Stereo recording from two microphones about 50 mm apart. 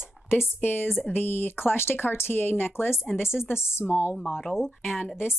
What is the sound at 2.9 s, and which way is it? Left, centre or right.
Speech, centre.